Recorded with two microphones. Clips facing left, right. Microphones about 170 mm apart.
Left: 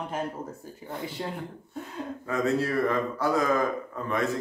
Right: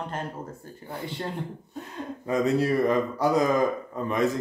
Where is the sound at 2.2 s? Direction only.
15° right (ahead or behind).